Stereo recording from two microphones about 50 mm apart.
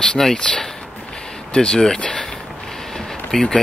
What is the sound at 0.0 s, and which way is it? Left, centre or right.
Speech, centre.